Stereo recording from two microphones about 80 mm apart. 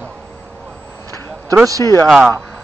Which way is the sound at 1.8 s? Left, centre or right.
Left.